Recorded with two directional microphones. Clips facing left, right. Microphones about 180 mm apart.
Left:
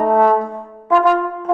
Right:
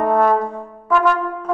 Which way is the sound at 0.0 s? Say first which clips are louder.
Left 2 dB; 20° left (ahead or behind).